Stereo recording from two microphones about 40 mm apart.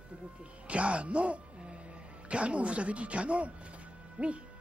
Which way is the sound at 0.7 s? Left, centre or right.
Right.